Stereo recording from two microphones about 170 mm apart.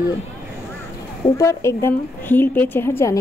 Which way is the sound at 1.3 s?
15° left (ahead or behind).